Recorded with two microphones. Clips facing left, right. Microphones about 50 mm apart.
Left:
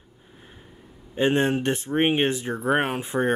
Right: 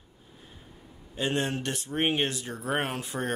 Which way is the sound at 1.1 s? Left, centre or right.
Left.